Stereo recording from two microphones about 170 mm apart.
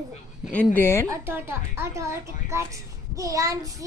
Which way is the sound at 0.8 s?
15° left (ahead or behind).